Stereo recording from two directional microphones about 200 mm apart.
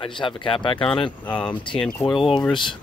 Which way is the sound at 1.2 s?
5° left (ahead or behind).